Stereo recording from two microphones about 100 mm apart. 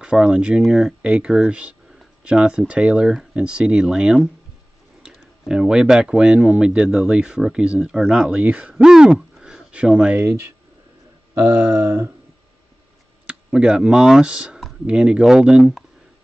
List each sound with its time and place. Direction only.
0.0 s speech: 10° right (ahead or behind)
13.3 s speech: 10° right (ahead or behind)